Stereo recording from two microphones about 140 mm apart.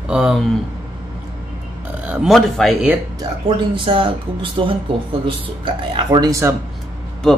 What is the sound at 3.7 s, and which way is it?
Speech, 35° right (ahead or behind).